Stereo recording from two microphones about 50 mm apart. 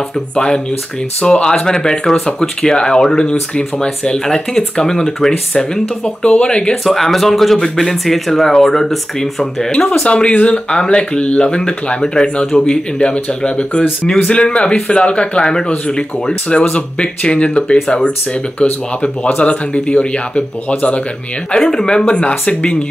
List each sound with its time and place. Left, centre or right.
1.2 s speech: centre
6.7 s speech: centre; by 20.4 s left
21.5 s speech: centre